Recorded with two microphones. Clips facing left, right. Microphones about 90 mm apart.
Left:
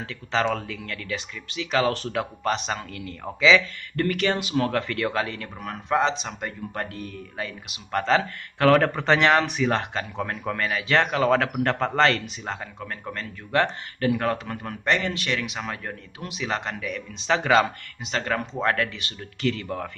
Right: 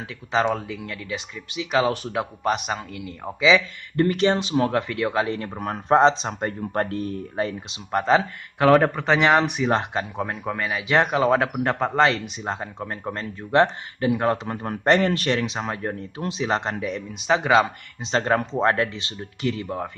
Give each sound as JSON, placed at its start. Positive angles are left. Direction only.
{"t": 0.3, "sound": "a man's voice", "side_deg": -15}
{"t": 7.9, "sound": "a man's voice", "side_deg": -20}
{"t": 12.4, "sound": "speech", "side_deg": -25}
{"t": 17.1, "sound": "a man's voice", "side_deg": -15}
{"t": 18.0, "sound": "speech", "side_deg": -30}